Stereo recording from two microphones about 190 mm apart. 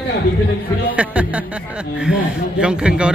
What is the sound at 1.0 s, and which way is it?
Speech, 5° right (ahead or behind).